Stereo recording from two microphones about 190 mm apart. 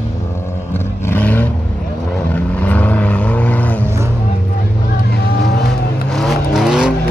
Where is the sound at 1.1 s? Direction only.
10° left (ahead or behind).